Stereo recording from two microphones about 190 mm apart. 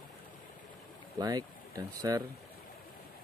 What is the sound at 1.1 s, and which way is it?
Speech, 20° right (ahead or behind).